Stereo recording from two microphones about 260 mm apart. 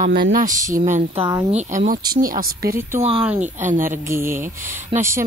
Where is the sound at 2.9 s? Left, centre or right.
Right.